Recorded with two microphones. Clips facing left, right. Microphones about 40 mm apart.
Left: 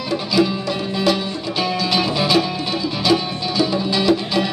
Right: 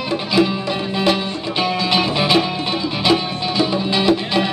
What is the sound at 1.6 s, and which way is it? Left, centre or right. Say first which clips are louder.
Music: right 2 dB; right.